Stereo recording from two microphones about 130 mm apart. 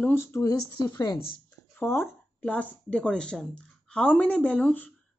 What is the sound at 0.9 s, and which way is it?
Speech, 35° left (ahead or behind).